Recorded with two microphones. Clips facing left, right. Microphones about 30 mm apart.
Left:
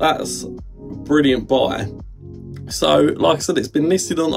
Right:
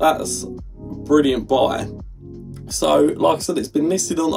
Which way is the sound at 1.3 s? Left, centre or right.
Centre.